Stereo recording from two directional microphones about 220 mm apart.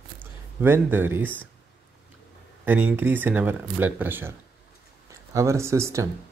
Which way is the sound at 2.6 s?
10° right (ahead or behind).